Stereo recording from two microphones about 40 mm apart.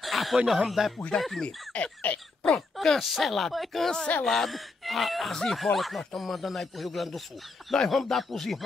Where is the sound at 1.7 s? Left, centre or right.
Left.